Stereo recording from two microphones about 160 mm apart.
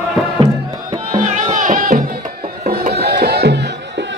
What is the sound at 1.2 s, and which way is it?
Music, 50° right (ahead or behind).